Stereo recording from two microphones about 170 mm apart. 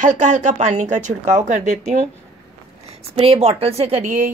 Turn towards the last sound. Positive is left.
turn(degrees=-50)  # may be behind; listen again after turning